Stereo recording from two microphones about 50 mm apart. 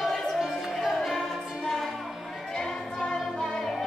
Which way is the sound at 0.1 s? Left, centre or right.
Centre.